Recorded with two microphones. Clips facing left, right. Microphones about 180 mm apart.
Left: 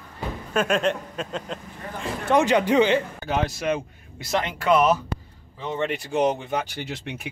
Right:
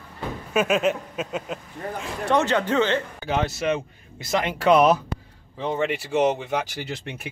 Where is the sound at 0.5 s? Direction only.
5° right (ahead or behind).